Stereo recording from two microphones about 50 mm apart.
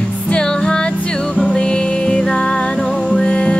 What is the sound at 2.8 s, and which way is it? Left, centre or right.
Music, centre.